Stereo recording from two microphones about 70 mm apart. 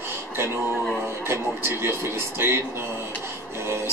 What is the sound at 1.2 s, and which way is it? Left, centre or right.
Speech, right.